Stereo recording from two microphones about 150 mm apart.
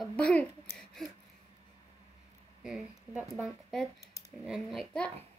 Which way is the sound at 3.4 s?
Centre (ahead or behind).